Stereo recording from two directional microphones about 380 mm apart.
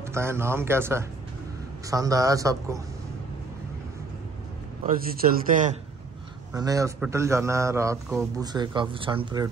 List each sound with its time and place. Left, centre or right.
0.0 s a man's voice: centre
4.8 s a man's voice: right
6.5 s a man's voice: centre